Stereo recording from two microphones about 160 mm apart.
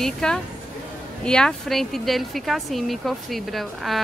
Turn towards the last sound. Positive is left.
turn(degrees=0)  # may be behind; listen again after turning